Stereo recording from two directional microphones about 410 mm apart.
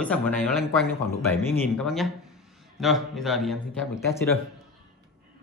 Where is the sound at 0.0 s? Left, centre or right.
Centre.